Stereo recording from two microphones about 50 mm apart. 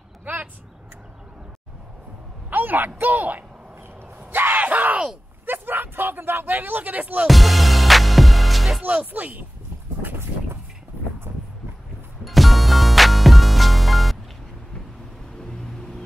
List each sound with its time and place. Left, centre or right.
0.2 s vehicle: right
2.5 s a sound: right
3.0 s speech: right
4.3 s a sound: right
4.6 s groan: right
5.5 s speech: right
7.2 s music: centre
9.0 s speech: right
12.3 s music: centre
15.3 s vehicle: centre